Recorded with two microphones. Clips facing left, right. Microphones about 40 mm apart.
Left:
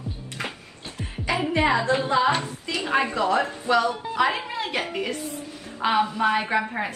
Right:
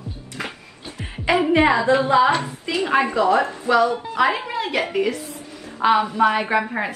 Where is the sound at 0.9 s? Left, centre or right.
Right.